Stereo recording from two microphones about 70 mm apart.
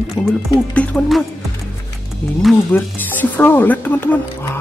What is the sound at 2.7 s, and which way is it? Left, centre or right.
Speech, left.